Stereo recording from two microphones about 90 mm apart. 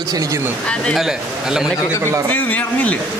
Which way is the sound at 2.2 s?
20° left (ahead or behind).